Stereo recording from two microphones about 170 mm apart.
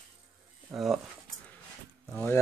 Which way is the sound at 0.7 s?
Centre (ahead or behind).